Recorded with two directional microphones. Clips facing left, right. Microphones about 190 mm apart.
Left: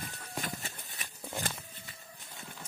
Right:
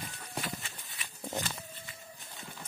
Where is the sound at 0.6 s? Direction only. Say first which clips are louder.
Left 3 dB; 45° left (ahead or behind).